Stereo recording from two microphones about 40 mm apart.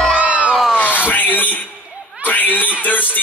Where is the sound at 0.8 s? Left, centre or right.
Left.